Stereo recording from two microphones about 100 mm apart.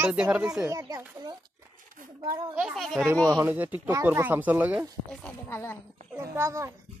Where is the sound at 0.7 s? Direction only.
35° right (ahead or behind).